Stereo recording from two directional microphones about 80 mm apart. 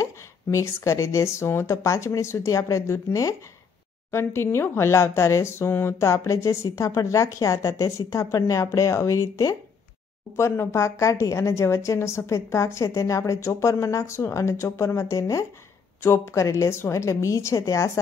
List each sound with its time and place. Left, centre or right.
0.0 s speech: left